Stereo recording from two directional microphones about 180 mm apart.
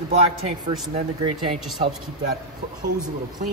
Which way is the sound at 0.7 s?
30° right (ahead or behind).